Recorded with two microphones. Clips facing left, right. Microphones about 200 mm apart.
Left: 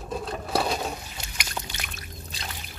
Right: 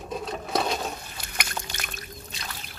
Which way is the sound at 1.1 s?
50° right (ahead or behind).